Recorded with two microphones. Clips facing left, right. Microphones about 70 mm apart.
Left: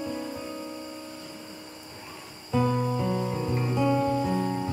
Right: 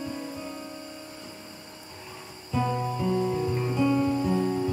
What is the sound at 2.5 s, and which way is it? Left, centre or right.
Music, centre.